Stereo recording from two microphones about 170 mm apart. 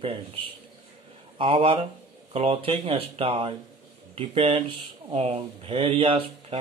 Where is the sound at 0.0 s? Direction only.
35° right (ahead or behind).